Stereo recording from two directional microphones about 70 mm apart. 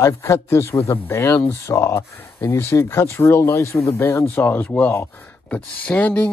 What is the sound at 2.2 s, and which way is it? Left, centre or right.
Speech, left.